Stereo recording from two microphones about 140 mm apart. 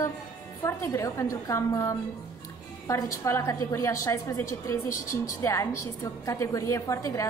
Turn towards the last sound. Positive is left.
turn(degrees=25)  # may be behind; listen again after turning